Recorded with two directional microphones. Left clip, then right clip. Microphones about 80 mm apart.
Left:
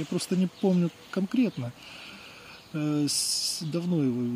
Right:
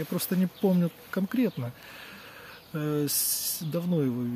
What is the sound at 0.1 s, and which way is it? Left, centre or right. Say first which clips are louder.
Speech: left 1 dB; right.